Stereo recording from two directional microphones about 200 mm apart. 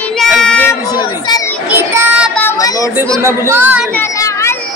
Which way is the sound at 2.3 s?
10° left (ahead or behind).